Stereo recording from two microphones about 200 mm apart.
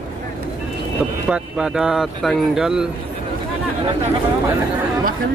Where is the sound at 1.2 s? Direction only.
5° right (ahead or behind).